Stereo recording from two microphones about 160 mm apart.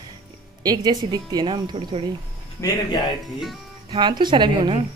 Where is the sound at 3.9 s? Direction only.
30° right (ahead or behind).